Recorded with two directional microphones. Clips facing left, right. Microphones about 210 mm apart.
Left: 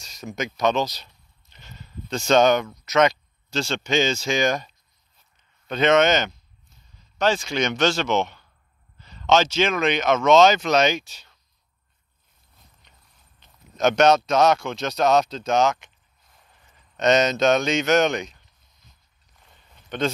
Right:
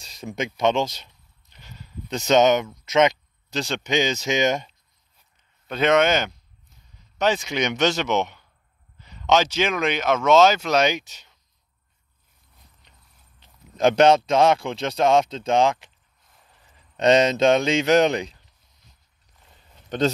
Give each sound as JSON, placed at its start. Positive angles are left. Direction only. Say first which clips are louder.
{"t": 0.0, "sound": "a sound", "louder": "right 1 dB", "side_deg": -30}
{"t": 0.6, "sound": "speech", "louder": "right 1 dB", "side_deg": -25}
{"t": 1.5, "sound": "clip-clop", "louder": "right 1 dB", "side_deg": -10}
{"t": 2.1, "sound": "speech", "louder": "even", "side_deg": -20}
{"t": 5.7, "sound": "speech", "louder": "left 1 dB", "side_deg": -10}
{"t": 13.4, "sound": "speech", "louder": "right 2 dB", "side_deg": -30}